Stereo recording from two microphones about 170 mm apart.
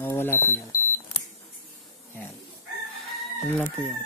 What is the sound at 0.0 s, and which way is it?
Alarm clock, 10° left (ahead or behind).